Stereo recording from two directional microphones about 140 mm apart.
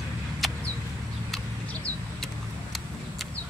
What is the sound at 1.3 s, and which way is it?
Vehicle, 10° left (ahead or behind).